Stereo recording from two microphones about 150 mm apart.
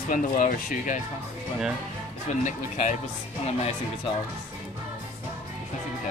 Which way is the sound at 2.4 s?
55° left (ahead or behind).